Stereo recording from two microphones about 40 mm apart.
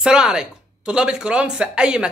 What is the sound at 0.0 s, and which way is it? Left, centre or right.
Speech, centre.